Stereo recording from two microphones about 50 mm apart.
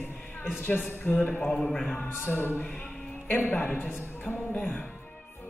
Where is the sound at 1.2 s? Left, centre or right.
Left.